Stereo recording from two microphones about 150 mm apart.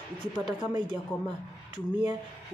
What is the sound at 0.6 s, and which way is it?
Speech, 30° right (ahead or behind).